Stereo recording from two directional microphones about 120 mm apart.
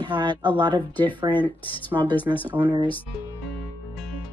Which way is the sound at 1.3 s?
15° left (ahead or behind).